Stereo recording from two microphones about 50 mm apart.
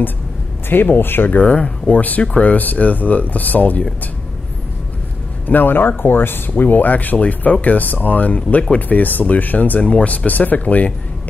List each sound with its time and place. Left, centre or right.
0.7 s speech: left
1.4 s speech: left
5.5 s speech: left